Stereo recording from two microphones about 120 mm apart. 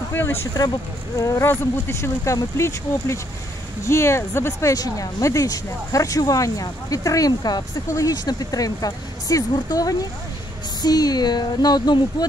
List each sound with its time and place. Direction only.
0.1 s speech: 20° left (ahead or behind)